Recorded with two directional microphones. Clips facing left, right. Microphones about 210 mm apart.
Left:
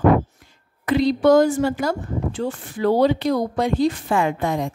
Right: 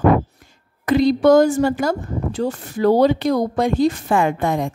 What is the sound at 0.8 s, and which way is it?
A woman's voice, 45° right (ahead or behind).